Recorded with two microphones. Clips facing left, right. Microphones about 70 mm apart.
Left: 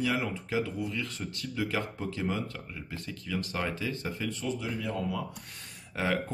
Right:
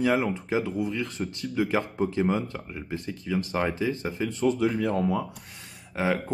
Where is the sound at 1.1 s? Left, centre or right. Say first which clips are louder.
Right 7 dB; right.